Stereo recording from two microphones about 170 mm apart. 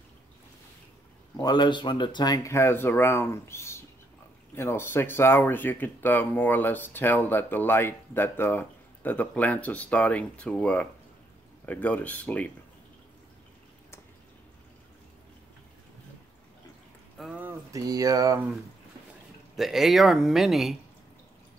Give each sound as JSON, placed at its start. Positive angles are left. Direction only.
{"t": 1.3, "sound": "speech", "side_deg": 25}
{"t": 17.2, "sound": "speech", "side_deg": -10}
{"t": 19.5, "sound": "speech", "side_deg": 0}